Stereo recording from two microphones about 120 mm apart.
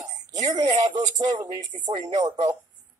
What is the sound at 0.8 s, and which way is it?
A woman's voice, 35° right (ahead or behind).